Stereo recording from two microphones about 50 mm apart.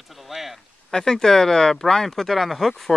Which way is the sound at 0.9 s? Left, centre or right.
Centre.